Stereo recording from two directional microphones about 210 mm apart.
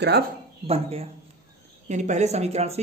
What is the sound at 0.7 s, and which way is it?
Speech, 30° right (ahead or behind).